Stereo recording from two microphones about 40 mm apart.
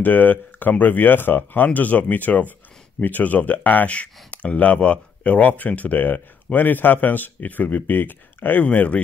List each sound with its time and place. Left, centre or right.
0.0 s speech: left
3.9 s speech: left